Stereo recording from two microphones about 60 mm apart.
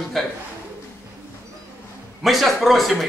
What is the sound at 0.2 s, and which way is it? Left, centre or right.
Speech, centre.